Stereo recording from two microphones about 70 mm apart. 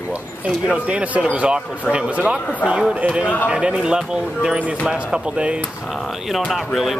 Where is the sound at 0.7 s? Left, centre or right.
Centre.